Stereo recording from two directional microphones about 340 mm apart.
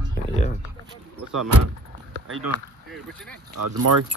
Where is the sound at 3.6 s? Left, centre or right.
Right.